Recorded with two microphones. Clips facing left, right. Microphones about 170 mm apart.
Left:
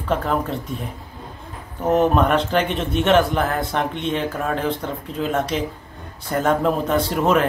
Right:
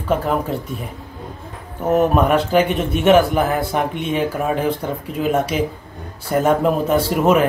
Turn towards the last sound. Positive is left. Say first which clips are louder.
# right 3 dB
turn(degrees=-5)  # may be behind; listen again after turning